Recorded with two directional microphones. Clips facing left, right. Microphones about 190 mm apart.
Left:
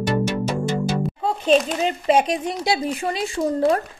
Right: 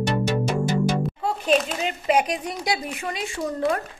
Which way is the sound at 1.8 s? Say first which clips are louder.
Left 3 dB; 30° left (ahead or behind).